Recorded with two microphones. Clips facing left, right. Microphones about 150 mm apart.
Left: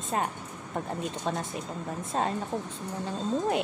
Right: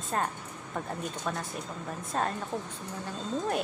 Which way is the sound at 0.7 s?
25° left (ahead or behind).